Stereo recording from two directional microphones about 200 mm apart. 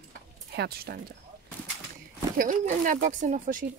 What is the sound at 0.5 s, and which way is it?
Speech, 55° right (ahead or behind).